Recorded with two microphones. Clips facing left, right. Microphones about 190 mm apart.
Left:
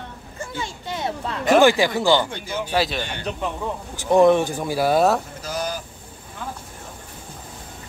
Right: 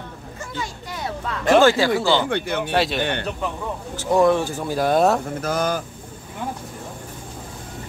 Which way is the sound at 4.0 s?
20° left (ahead or behind).